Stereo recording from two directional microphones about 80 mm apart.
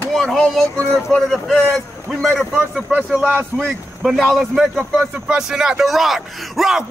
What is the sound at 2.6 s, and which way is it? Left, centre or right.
Speech, centre.